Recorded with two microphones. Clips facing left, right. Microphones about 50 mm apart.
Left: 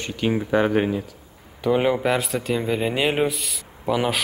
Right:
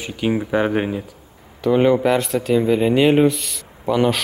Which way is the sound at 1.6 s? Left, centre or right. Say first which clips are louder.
Right 5 dB; centre.